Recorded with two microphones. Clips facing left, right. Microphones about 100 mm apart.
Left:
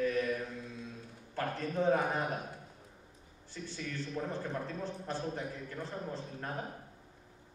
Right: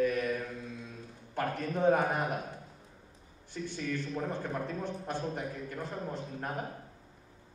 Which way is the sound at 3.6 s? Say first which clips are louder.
Right 5 dB; 55° right (ahead or behind).